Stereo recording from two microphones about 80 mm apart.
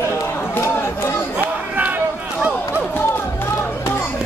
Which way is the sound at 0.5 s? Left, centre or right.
Left.